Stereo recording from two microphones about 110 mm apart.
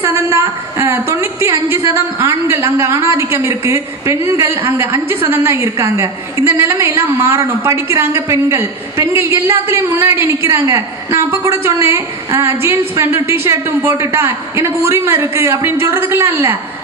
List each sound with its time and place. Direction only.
0.0 s a woman's voice: 25° right (ahead or behind)